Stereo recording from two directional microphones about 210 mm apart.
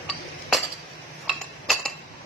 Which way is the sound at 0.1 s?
Centre (ahead or behind).